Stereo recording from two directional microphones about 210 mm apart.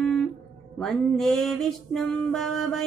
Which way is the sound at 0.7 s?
Centre (ahead or behind).